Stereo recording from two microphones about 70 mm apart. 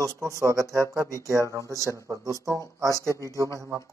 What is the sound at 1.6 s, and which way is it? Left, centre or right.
Speech, left.